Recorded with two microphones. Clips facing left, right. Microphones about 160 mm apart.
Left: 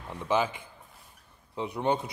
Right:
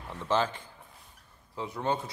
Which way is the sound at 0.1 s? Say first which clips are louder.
Left 1 dB; 10° left (ahead or behind).